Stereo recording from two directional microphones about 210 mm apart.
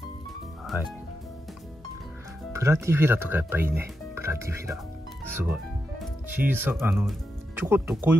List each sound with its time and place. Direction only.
2.5 s speech: 15° right (ahead or behind)